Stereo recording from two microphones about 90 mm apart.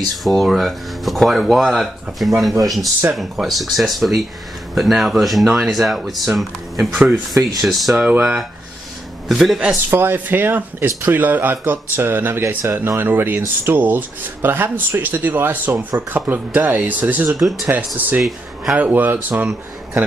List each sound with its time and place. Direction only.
0.2 s speech: centre (ahead or behind)
8.0 s speech: 15° right (ahead or behind)
9.3 s speech: 5° right (ahead or behind)
9.8 s speech: 25° right (ahead or behind)
17.3 s speech: 5° right (ahead or behind)
17.6 s speech: 20° right (ahead or behind)